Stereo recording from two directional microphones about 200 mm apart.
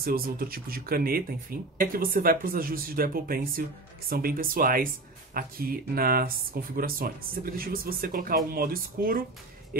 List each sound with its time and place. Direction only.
0.0 s speech: 45° right (ahead or behind)